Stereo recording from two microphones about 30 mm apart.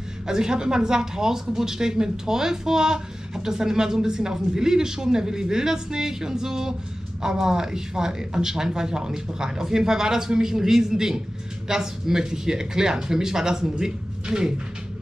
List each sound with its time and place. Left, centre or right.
0.3 s speech: right